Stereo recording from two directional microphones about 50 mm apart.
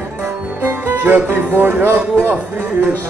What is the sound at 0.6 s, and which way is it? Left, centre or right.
Speech, right.